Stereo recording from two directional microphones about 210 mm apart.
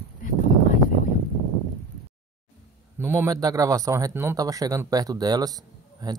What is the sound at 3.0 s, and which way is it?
A man's voice, 10° right (ahead or behind).